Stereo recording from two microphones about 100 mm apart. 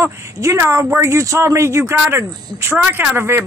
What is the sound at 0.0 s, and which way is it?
Speech, 30° right (ahead or behind).